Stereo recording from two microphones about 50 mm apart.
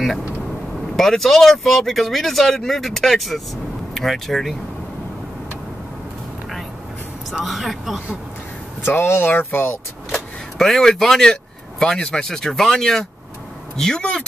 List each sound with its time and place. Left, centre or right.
0.9 s speech: centre
7.4 s speech: centre
8.9 s speech: left
10.6 s speech: centre